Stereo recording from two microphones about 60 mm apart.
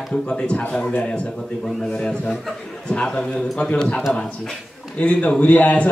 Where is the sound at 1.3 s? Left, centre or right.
Centre.